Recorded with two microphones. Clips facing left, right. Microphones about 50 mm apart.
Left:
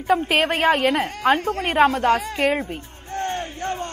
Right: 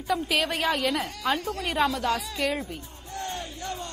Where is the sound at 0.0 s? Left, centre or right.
Left.